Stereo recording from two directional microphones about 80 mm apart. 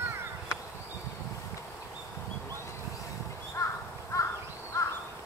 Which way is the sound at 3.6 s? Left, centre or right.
Left.